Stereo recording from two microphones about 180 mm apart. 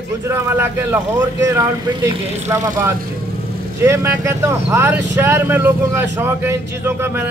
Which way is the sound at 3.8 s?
15° right (ahead or behind).